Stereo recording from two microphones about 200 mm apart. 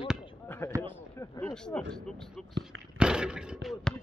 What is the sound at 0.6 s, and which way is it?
Speech, 15° right (ahead or behind).